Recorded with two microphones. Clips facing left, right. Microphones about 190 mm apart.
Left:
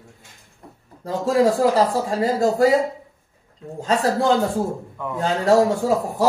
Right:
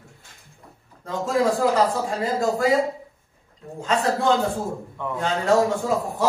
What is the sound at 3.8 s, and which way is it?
Speech, 40° left (ahead or behind).